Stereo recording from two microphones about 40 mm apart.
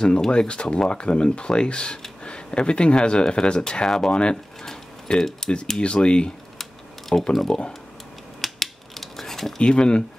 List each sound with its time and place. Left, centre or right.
0.0 s speech: left
4.1 s speech: left
6.6 s typing: centre
7.5 s speech: centre
8.4 s scissors: centre
9.6 s speech: left